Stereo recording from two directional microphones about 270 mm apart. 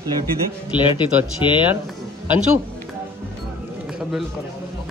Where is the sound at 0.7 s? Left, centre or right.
Centre.